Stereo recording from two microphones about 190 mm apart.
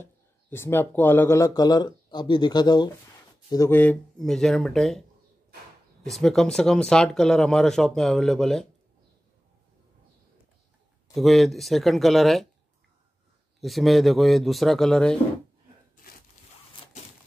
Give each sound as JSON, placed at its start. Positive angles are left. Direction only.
{"t": 0.0, "sound": "speech", "side_deg": 10}
{"t": 6.0, "sound": "speech", "side_deg": 0}
{"t": 11.1, "sound": "speech", "side_deg": 0}
{"t": 13.6, "sound": "speech", "side_deg": 0}